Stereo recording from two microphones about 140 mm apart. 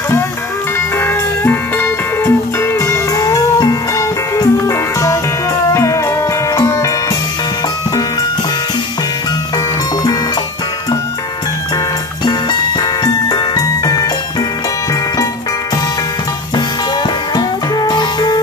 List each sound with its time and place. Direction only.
0.7 s music: 15° left (ahead or behind)
12.3 s music: 30° left (ahead or behind)
17.4 s music: 30° left (ahead or behind)